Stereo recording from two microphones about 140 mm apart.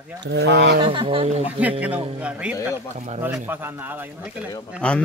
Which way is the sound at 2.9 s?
55° right (ahead or behind).